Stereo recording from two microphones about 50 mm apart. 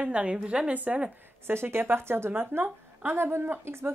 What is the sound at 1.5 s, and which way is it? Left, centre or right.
Speech, right.